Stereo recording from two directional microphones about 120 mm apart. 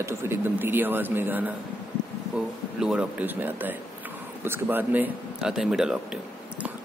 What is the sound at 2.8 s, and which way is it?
A man's voice, 10° right (ahead or behind).